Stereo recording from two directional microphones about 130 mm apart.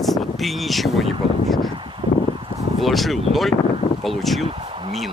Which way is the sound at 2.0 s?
60° right (ahead or behind).